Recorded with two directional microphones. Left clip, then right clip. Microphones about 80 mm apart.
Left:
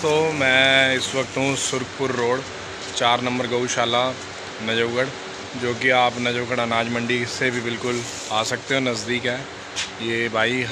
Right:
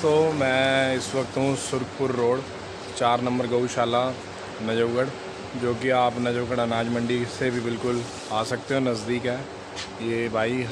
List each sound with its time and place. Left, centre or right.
0.0 s speech: right
3.0 s speech: right
10.0 s speech: centre